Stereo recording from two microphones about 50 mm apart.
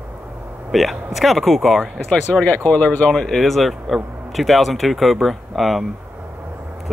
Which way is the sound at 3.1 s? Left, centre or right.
Centre.